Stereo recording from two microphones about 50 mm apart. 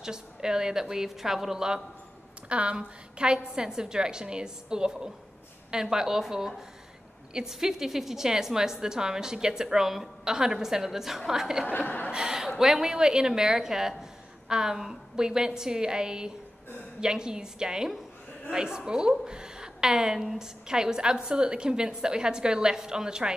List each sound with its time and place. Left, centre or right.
0.0 s a woman's voice: centre
2.5 s a woman's voice: right
11.6 s speech: left
12.1 s a woman's voice: centre